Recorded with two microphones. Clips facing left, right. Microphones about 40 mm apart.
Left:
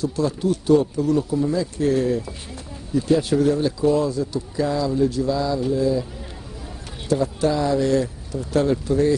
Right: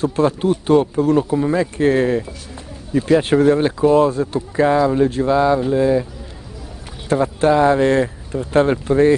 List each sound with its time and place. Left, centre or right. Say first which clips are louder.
0.0 s speech: right 5 dB; right
7.1 s speech: right 5 dB; right